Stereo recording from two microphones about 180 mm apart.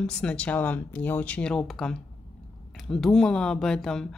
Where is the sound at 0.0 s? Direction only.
5° left (ahead or behind).